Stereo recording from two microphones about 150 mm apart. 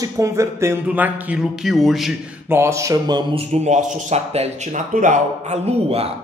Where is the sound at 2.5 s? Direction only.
20° right (ahead or behind).